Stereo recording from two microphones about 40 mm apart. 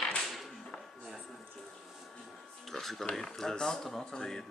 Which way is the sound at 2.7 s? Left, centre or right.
Centre.